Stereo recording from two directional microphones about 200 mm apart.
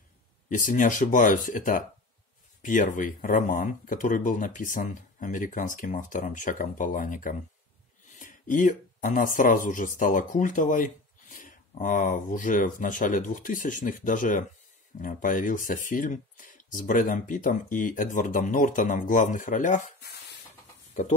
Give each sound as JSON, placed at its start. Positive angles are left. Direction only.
{"t": 0.5, "sound": "speech", "side_deg": 40}